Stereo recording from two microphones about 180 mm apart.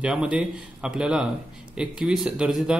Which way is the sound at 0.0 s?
5° right (ahead or behind).